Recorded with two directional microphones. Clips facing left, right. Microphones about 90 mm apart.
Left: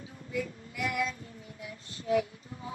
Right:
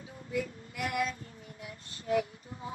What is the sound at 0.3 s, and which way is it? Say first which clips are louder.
Child singing: even; 50° right (ahead or behind).